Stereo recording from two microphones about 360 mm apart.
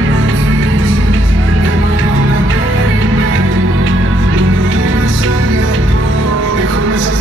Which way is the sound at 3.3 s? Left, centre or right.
Right.